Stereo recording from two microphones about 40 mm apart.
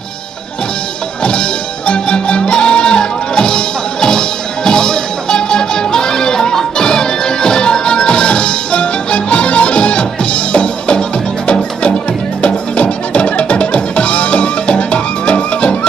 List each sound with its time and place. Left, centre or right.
1.2 s music: left